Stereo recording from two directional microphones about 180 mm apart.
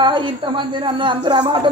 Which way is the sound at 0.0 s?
25° right (ahead or behind).